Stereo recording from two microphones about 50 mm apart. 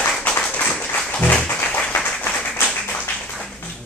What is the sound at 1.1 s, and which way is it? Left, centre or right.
Music, left.